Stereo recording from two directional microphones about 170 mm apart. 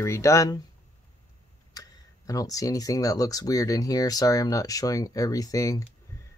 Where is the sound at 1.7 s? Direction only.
20° left (ahead or behind).